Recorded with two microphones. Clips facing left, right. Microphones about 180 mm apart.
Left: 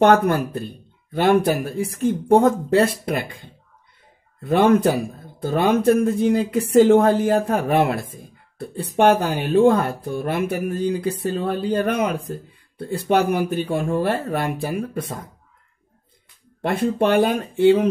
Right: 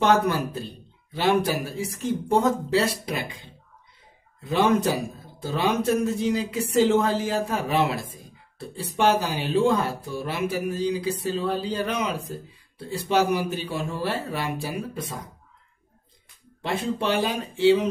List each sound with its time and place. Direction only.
0.0 s speech: 55° left (ahead or behind)
16.6 s speech: 55° left (ahead or behind)